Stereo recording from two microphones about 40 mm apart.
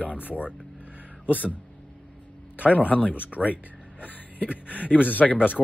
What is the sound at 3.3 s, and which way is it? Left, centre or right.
Speech, centre.